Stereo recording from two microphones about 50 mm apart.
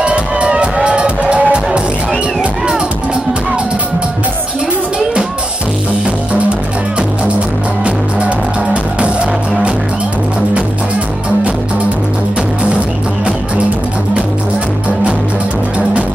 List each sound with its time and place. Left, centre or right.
0.0 s music: right